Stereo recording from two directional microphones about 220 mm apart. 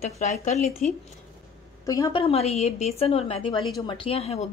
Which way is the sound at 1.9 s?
15° left (ahead or behind).